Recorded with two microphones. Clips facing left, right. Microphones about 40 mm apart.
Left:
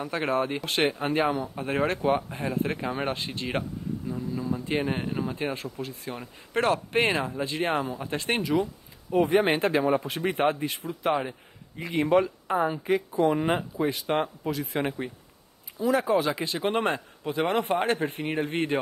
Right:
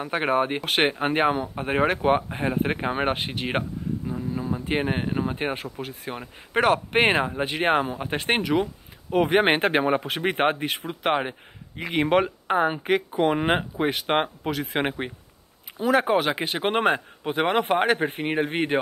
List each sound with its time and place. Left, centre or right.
0.0 s speech: right
0.7 s speech: right
0.9 s speech: right
2.3 s speech: right
4.1 s speech: right
5.3 s speech: right
15.8 s speech: right